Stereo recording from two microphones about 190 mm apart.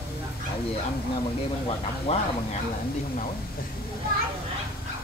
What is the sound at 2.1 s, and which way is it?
Speech, 35° left (ahead or behind).